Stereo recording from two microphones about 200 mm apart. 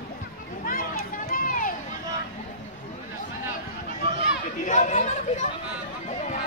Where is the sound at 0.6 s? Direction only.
45° left (ahead or behind).